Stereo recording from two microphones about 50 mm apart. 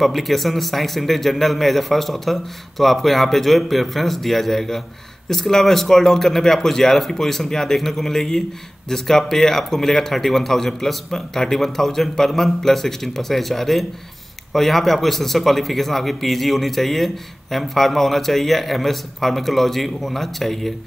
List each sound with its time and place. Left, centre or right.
0.0 s a man's voice: centre